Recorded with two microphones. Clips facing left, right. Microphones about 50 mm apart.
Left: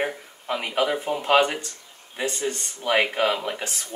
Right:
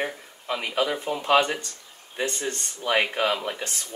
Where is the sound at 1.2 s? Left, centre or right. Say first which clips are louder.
Left 1 dB; left.